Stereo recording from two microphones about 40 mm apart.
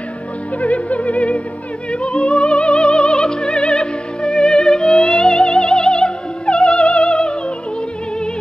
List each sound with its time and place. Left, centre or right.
0.6 s music: left